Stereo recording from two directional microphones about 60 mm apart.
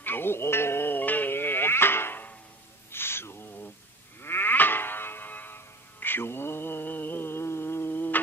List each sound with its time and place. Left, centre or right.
0.0 s music: left
2.9 s a sound: left
4.2 s music: left